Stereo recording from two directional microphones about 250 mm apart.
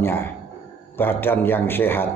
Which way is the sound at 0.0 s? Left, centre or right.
Centre.